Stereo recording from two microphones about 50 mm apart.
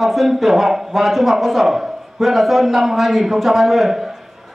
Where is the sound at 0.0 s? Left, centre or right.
Centre.